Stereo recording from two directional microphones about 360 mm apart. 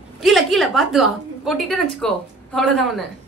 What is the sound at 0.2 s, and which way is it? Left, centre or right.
A woman's voice, centre.